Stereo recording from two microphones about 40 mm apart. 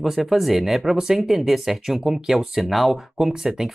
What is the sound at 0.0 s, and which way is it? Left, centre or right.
Speech, centre.